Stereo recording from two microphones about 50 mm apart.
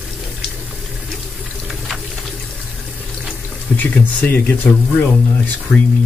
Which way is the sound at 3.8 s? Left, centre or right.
Left.